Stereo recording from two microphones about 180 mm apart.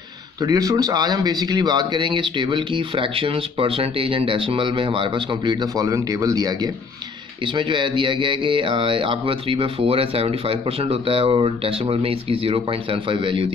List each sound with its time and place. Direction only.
0.4 s speech: 20° right (ahead or behind)